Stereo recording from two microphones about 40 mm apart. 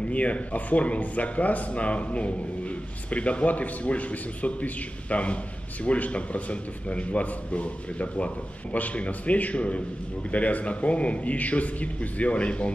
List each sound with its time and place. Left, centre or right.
0.1 s a man's voice: left